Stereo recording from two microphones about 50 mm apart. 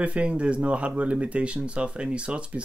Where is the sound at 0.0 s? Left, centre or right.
Right.